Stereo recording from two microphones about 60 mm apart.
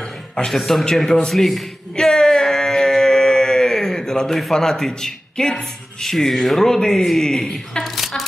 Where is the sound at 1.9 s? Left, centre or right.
Centre.